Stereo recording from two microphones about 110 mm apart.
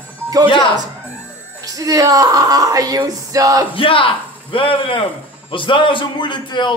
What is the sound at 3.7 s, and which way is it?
A man's voice, 55° left (ahead or behind).